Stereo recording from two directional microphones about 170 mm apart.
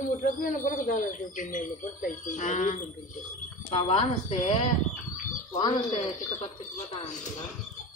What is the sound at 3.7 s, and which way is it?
Speech, 30° left (ahead or behind).